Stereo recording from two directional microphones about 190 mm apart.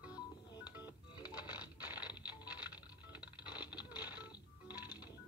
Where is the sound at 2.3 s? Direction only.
5° right (ahead or behind).